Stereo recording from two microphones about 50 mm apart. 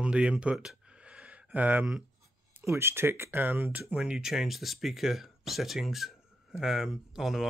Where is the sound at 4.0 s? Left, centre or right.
Centre.